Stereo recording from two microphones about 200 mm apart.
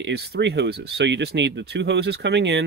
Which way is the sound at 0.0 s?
55° right (ahead or behind).